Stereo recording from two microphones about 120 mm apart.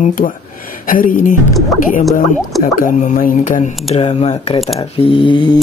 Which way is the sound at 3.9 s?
55° left (ahead or behind).